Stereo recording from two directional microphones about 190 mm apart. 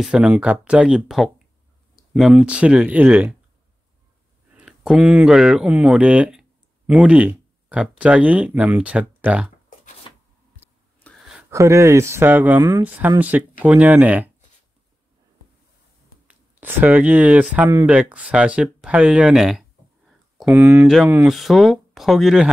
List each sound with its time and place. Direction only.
0.0 s speech: 5° right (ahead or behind)
4.6 s speech: 5° right (ahead or behind)
10.1 s a sound: 25° left (ahead or behind)
11.1 s a sound: 5° right (ahead or behind)
11.5 s speech: 15° right (ahead or behind)
16.3 s speech: 10° right (ahead or behind)